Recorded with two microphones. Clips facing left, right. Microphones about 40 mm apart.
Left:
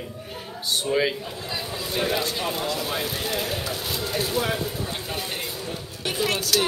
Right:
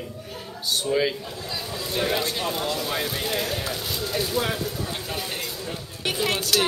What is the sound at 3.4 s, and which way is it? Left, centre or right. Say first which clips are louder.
A man's voice: even; centre.